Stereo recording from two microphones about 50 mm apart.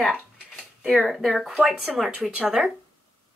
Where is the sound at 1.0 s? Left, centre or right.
Centre.